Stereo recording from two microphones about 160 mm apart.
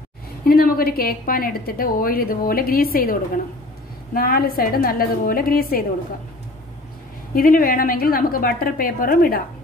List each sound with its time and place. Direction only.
0.5 s a woman's voice: 65° left (ahead or behind)
7.3 s a woman's voice: 65° left (ahead or behind)